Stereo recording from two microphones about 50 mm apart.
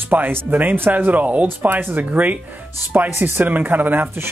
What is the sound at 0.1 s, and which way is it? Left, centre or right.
Speech, right.